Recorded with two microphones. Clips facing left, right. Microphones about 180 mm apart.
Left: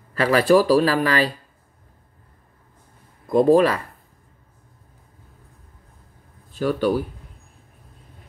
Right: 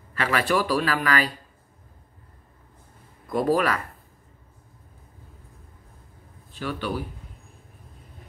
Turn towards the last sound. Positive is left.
turn(degrees=40)  # may be behind; listen again after turning